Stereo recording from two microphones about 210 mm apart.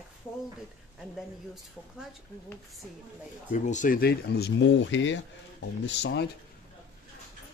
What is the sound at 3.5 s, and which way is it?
Speech, 35° left (ahead or behind).